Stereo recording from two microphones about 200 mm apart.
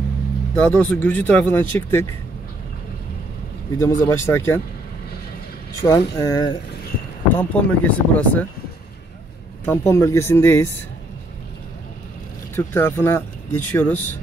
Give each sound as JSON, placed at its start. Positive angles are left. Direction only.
{"t": 0.6, "sound": "speech", "side_deg": 5}
{"t": 3.7, "sound": "speech", "side_deg": 10}
{"t": 5.8, "sound": "speech", "side_deg": 20}
{"t": 7.3, "sound": "speech", "side_deg": 5}
{"t": 9.7, "sound": "speech", "side_deg": 15}
{"t": 12.5, "sound": "speech", "side_deg": 10}